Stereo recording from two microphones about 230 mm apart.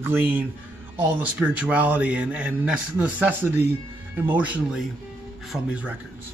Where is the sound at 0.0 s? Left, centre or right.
Centre.